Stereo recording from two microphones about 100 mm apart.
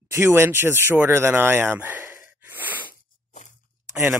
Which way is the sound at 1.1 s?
25° right (ahead or behind).